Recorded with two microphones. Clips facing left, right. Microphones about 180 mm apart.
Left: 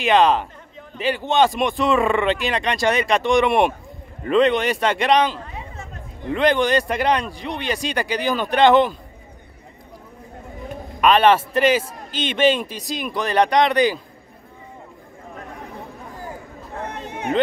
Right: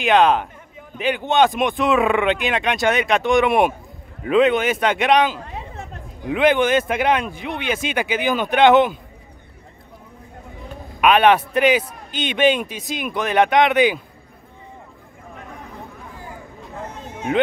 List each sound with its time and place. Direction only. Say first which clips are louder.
0.0 s speech: right 1 dB; centre (ahead or behind)
11.0 s speech: right 1 dB; 5° right (ahead or behind)
16.8 s a sound: left 2 dB; 65° left (ahead or behind)